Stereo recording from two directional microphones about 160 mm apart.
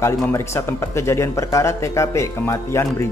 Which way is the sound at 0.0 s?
15° left (ahead or behind).